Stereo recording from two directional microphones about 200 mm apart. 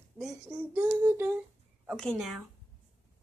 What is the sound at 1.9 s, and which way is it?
Speech, centre (ahead or behind).